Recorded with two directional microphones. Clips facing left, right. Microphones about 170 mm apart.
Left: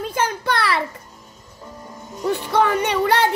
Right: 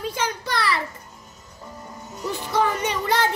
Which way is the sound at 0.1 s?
55° left (ahead or behind).